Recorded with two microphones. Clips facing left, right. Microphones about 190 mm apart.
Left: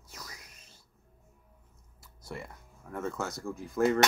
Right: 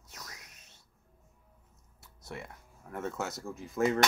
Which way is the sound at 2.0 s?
Centre (ahead or behind).